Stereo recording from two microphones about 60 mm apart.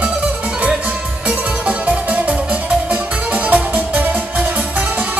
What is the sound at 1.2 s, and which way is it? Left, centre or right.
Music, right.